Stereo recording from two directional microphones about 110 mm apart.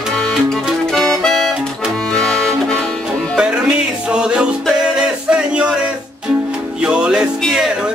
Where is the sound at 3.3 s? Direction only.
10° right (ahead or behind).